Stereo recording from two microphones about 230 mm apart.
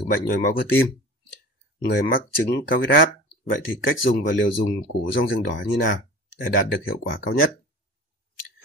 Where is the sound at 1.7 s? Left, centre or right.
Left.